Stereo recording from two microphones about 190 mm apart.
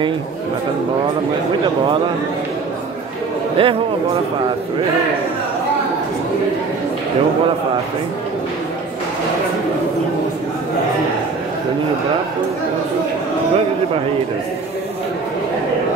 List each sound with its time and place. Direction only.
3.5 s a man's voice: 30° right (ahead or behind)